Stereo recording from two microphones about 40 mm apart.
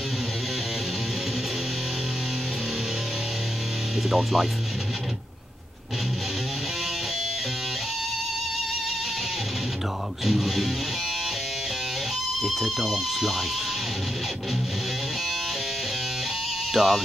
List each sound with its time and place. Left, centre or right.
4.1 s speech: centre
10.2 s speech: centre
12.4 s speech: centre
16.7 s speech: centre